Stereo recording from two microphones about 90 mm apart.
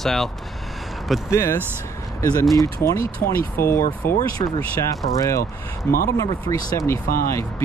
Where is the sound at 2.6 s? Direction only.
35° left (ahead or behind).